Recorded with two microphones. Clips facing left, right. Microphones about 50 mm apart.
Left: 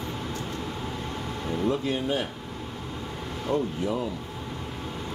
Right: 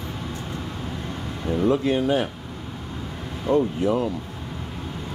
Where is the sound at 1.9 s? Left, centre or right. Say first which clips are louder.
Right 6 dB; right.